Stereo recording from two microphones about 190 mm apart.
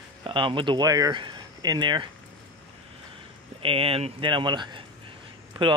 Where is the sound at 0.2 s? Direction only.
25° right (ahead or behind).